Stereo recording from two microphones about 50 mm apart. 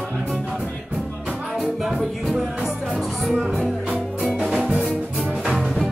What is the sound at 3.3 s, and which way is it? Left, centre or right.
Speech, centre.